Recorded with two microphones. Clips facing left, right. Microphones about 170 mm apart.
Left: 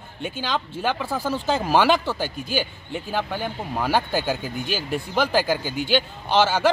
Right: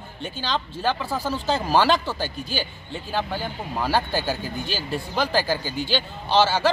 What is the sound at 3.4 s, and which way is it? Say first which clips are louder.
A man's voice: left 1 dB; 15° left (ahead or behind).